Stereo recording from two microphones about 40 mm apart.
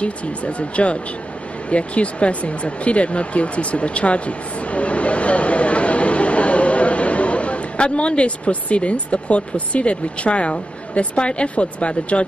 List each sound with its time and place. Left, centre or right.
0.0 s speech: left